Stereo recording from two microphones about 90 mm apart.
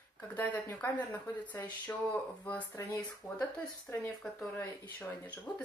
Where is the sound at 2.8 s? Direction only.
35° left (ahead or behind).